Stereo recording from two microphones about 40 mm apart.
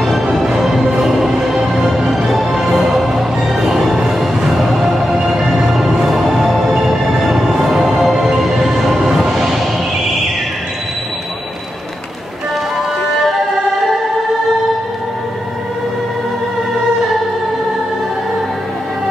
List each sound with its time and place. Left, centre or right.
0.0 s music: centre